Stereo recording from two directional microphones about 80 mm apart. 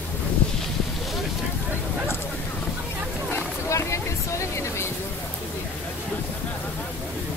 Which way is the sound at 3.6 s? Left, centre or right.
Left.